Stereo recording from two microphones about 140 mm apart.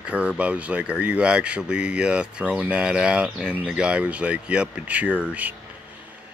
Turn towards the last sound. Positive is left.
turn(degrees=-10)  # may be behind; listen again after turning